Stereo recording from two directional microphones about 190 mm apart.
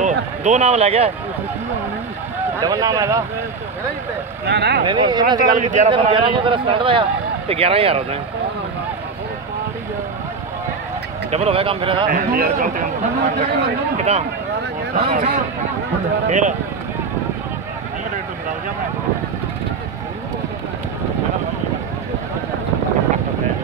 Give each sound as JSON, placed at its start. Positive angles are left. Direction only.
{"t": 0.0, "sound": "speech", "side_deg": -40}
{"t": 2.6, "sound": "a man's voice", "side_deg": -20}
{"t": 4.5, "sound": "speech", "side_deg": -60}
{"t": 4.8, "sound": "a man's voice", "side_deg": -20}
{"t": 5.4, "sound": "a man's voice", "side_deg": -45}
{"t": 5.9, "sound": "a man's voice", "side_deg": -25}
{"t": 11.2, "sound": "speech", "side_deg": -35}
{"t": 12.1, "sound": "a man's voice", "side_deg": -55}
{"t": 12.4, "sound": "speech", "side_deg": -40}
{"t": 13.9, "sound": "speech", "side_deg": -35}